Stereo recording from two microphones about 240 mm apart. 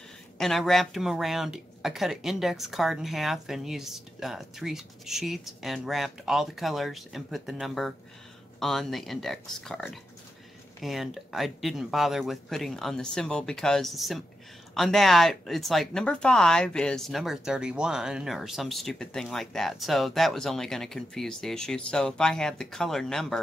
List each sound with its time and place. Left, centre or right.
0.4 s speech: centre